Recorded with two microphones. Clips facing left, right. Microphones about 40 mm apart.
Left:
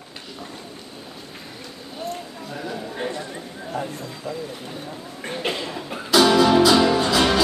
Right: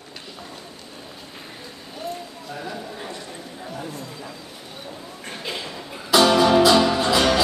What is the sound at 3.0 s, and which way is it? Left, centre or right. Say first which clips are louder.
Clip-clop: left 6 dB; left.